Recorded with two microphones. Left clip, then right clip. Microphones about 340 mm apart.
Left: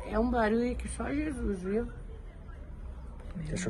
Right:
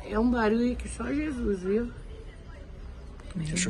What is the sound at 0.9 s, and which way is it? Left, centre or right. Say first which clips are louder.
Speech: right 3 dB; centre.